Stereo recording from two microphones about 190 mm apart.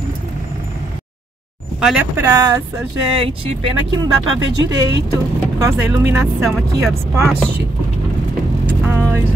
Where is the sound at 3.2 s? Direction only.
30° right (ahead or behind).